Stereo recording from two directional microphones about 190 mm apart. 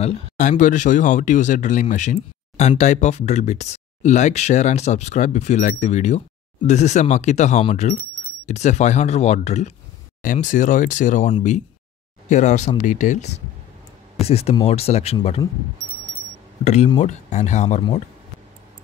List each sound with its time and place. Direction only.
0.0 s speech: 40° left (ahead or behind)
16.6 s speech: 35° left (ahead or behind)